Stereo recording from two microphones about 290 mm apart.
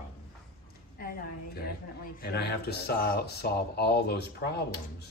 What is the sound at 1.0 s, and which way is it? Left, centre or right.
A woman's voice, left.